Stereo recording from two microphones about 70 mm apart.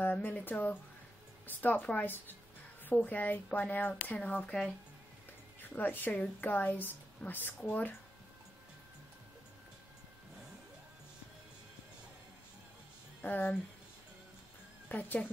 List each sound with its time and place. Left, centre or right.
0.0 s a woman's voice: left
5.6 s a woman's voice: left
13.2 s a woman's voice: left
14.9 s a woman's voice: left